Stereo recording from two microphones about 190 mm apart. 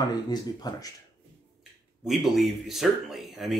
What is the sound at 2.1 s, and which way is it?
Speech, centre (ahead or behind).